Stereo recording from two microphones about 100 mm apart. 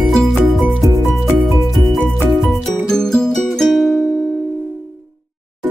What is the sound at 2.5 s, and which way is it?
Music, 5° left (ahead or behind).